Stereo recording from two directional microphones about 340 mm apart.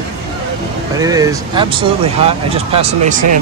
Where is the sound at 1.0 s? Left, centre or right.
Centre.